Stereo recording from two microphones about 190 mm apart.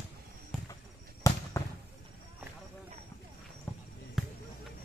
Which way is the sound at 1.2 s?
15° left (ahead or behind).